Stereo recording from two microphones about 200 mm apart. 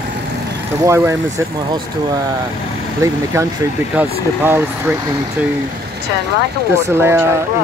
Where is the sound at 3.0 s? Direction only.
15° right (ahead or behind).